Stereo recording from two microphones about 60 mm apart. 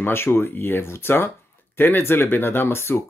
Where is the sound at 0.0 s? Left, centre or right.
Left.